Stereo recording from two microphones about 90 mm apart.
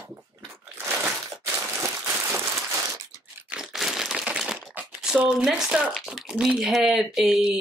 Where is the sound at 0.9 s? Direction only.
20° right (ahead or behind).